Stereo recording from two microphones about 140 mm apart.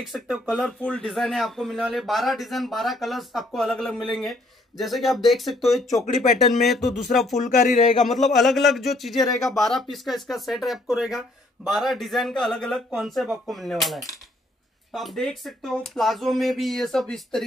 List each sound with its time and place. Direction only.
0.0 s speech: centre (ahead or behind)
7.3 s speech: 60° left (ahead or behind)
8.1 s speech: centre (ahead or behind)